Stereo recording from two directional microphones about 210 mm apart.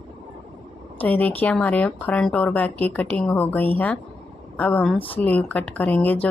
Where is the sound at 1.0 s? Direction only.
10° left (ahead or behind).